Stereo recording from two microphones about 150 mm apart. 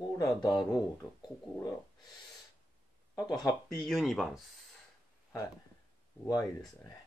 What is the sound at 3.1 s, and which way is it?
Speech, 25° left (ahead or behind).